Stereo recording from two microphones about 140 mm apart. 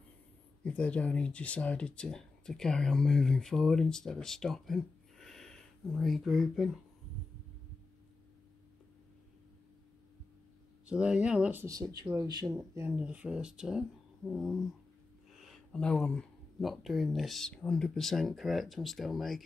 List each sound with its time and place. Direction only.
0.7 s speech: 10° left (ahead or behind)
10.9 s speech: 5° right (ahead or behind)
11.6 s speech: 25° right (ahead or behind); by 14.6 s centre (ahead or behind)
15.3 s a sound: centre (ahead or behind)
16.6 s speech: centre (ahead or behind)